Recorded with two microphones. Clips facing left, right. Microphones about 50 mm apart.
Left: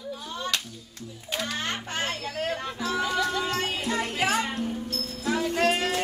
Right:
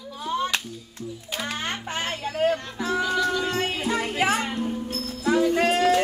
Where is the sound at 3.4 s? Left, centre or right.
Centre.